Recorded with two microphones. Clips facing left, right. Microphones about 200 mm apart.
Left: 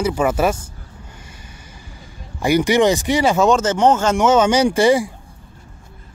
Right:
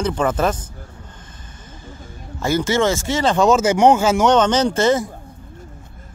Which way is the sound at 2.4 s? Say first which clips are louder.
Left 3 dB; 15° left (ahead or behind).